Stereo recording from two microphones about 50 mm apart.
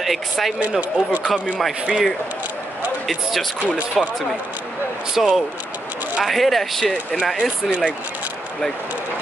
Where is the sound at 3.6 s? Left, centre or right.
Left.